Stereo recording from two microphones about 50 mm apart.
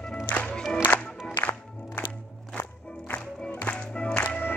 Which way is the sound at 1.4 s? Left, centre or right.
Left.